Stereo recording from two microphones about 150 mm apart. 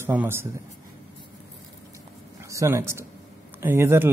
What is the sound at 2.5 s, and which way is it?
Speech, 20° right (ahead or behind).